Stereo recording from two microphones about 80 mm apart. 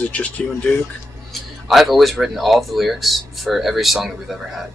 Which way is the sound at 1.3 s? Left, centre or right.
Centre.